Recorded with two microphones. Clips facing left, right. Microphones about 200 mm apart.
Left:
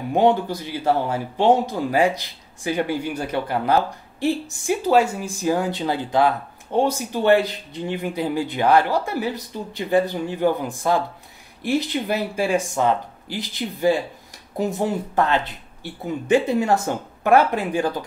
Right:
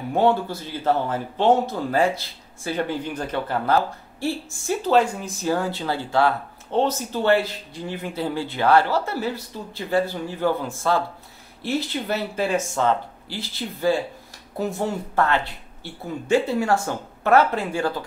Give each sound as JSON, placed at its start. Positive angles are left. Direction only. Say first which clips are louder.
{"t": 0.1, "sound": "speech", "louder": "left 2 dB", "side_deg": 15}